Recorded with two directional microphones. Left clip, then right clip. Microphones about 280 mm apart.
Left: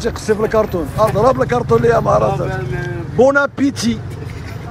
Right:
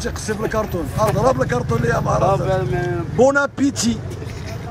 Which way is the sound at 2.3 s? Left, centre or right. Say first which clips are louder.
Right 2 dB; right.